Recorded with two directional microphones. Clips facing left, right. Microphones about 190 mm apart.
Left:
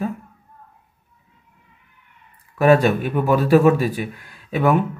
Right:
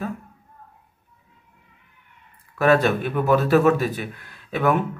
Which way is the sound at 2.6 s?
15° left (ahead or behind).